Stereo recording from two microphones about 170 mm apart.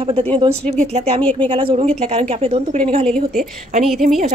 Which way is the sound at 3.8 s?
Centre (ahead or behind).